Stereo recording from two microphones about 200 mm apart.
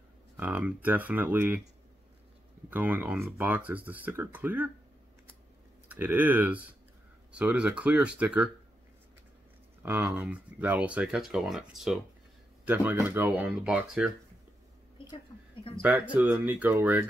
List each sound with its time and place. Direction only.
0.4 s speech: 10° right (ahead or behind)
2.7 s speech: 10° right (ahead or behind)
5.9 s speech: 10° right (ahead or behind)
9.8 s speech: 10° right (ahead or behind)
15.7 s speech: 25° left (ahead or behind)
16.2 s speech: 10° right (ahead or behind)